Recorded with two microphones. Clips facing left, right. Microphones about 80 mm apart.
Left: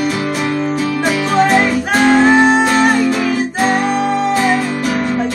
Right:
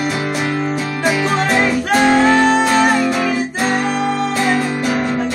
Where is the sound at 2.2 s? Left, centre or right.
Centre.